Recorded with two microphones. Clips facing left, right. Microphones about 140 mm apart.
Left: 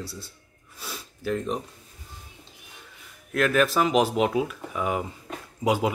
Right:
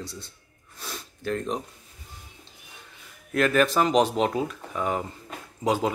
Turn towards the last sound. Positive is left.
turn(degrees=10)  # may be behind; listen again after turning